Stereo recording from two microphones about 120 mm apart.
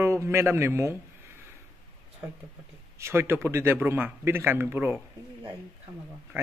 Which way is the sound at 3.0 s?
20° right (ahead or behind).